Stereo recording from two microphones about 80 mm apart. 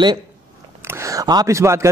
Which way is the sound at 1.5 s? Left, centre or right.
Right.